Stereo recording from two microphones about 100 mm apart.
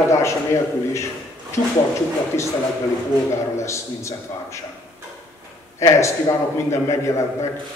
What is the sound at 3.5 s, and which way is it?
A man's voice, 30° left (ahead or behind).